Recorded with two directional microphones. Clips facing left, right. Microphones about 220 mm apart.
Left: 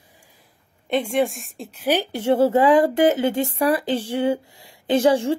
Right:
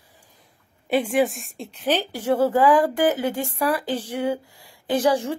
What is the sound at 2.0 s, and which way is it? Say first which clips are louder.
Speech: left 5 dB; 25° left (ahead or behind).